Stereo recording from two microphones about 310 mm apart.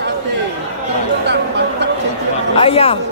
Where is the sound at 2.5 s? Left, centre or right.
Centre.